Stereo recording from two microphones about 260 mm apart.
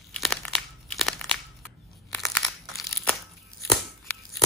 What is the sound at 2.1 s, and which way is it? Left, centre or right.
Crumpling, centre.